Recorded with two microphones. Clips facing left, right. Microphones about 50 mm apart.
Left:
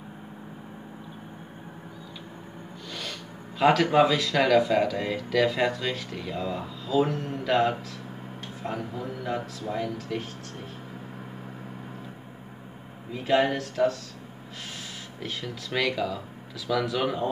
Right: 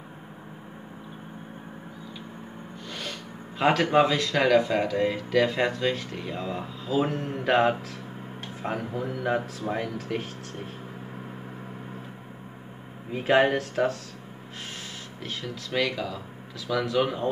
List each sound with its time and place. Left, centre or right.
2.9 s speech: centre
7.4 s speech: right
13.1 s speech: right
15.2 s speech: centre